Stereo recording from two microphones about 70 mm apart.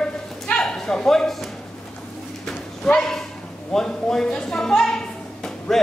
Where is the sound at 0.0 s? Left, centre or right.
Centre.